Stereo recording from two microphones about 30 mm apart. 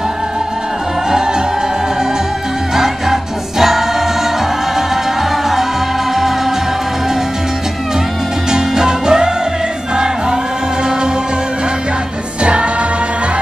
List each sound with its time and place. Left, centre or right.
2.7 s music: centre
8.5 s music: right